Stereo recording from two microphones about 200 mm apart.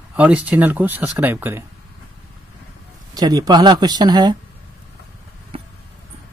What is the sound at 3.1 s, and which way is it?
Speech, 20° right (ahead or behind).